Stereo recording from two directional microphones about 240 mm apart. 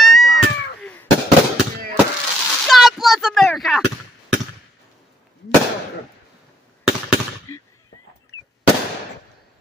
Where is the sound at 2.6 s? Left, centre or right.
Centre.